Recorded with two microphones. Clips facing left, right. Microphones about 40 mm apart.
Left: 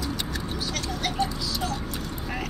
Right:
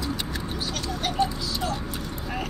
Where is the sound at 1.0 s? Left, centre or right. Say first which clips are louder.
Right 3 dB; right.